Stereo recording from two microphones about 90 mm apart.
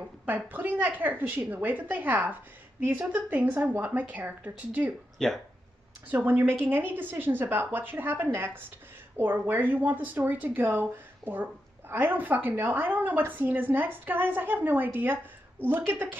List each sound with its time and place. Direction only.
0.2 s a woman's voice: 20° right (ahead or behind)
5.2 s speech: 5° left (ahead or behind)
6.0 s speech: 20° right (ahead or behind)
8.5 s a sound: 20° right (ahead or behind)
9.5 s speech: 20° right (ahead or behind)